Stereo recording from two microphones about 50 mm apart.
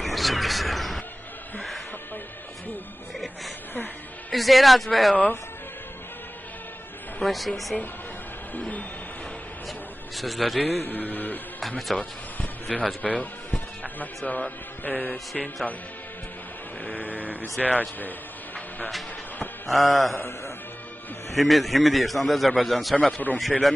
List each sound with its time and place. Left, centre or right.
0.0 s a sound: centre
4.3 s a man's voice: centre
7.2 s a man's voice: centre
8.5 s a sound: left
10.1 s a man's voice: centre
10.8 s mantra: left
11.9 s a man's voice: centre
13.0 s music: left
14.9 s mantra: left
15.3 s speech: centre
16.8 s a sound: left
19.7 s a man's voice: centre
21.3 s a man's voice: centre
23.3 s mantra: left